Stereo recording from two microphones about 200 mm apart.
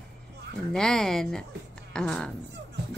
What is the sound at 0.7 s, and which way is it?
Speech, 5° left (ahead or behind).